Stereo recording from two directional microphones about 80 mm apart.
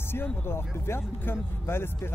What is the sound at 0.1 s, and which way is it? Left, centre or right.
Speech, left.